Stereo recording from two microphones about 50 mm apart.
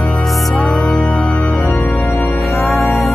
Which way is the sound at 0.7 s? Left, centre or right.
Left.